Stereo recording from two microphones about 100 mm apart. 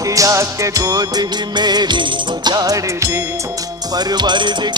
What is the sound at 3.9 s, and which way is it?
Music, 45° right (ahead or behind).